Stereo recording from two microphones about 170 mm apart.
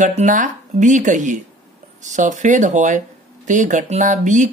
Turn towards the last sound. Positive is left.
turn(degrees=-45)  # may be behind; listen again after turning